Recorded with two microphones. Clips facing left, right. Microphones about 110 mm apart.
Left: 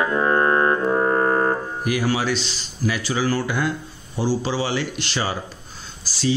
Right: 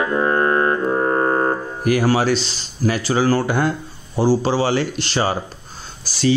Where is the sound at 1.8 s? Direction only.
45° right (ahead or behind).